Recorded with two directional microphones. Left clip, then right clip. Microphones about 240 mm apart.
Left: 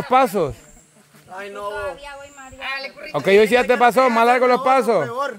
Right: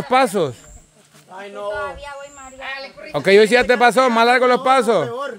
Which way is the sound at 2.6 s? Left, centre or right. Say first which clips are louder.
Left 2 dB; left.